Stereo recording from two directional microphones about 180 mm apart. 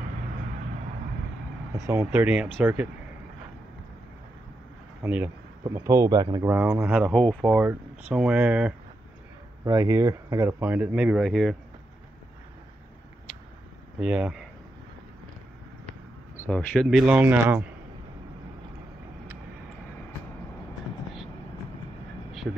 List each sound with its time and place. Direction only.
2.0 s speech: 5° right (ahead or behind)
5.0 s speech: 10° right (ahead or behind)
7.1 s speech: centre (ahead or behind)
7.5 s speech: 10° right (ahead or behind)
13.9 s speech: 5° right (ahead or behind)
16.3 s speech: 10° left (ahead or behind); by 17.6 s 10° right (ahead or behind)
22.3 s a sound: centre (ahead or behind)